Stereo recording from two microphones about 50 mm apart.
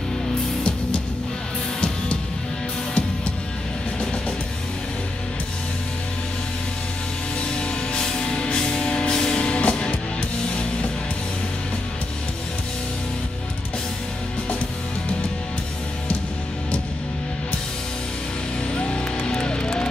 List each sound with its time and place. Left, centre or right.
7.3 s music: left
18.7 s music: centre